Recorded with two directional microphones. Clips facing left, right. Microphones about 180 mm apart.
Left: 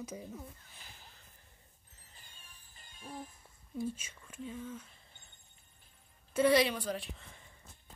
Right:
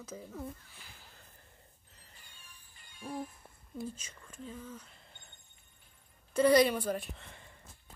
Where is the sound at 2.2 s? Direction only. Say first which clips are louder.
Right 1 dB; 40° left (ahead or behind).